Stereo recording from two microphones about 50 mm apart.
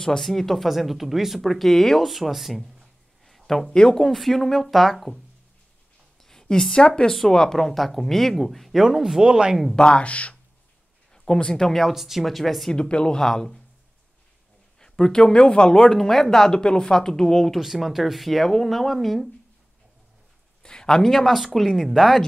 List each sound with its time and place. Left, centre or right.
0.0 s speech: centre
6.2 s a sound: centre
7.0 s speech: centre
8.8 s speech: centre
9.8 s speech: left
11.9 s speech: centre
12.7 s speech: centre
14.8 s speech: centre
17.6 s speech: centre
20.6 s speech: centre